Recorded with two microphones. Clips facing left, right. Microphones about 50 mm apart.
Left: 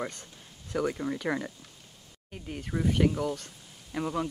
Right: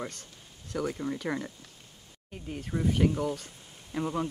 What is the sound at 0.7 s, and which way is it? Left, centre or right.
Speech, centre.